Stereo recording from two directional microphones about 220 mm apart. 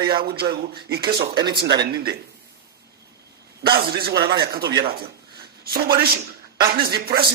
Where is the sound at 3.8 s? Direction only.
45° right (ahead or behind).